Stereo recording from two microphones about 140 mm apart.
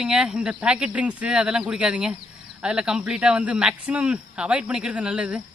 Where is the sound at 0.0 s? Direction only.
5° right (ahead or behind).